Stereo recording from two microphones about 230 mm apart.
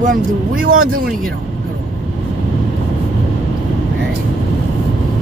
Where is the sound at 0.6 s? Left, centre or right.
Right.